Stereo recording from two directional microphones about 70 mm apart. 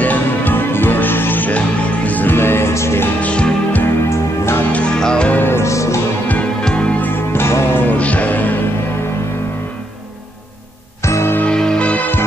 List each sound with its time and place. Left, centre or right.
0.0 s music: left
3.2 s music: centre
3.8 s music: left
4.7 s music: centre
5.4 s music: left
6.6 s music: centre
11.1 s music: left
11.4 s music: centre